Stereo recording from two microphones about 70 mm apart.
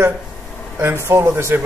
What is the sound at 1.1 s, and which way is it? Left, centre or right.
Speech, right.